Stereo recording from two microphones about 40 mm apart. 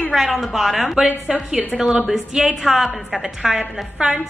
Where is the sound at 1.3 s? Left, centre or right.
Centre.